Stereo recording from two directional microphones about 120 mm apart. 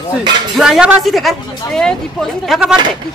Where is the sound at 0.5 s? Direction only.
5° right (ahead or behind).